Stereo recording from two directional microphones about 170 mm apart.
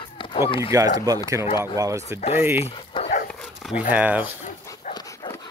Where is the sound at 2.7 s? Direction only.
35° left (ahead or behind).